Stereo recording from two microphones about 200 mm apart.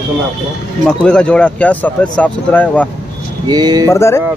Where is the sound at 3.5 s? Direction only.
20° right (ahead or behind).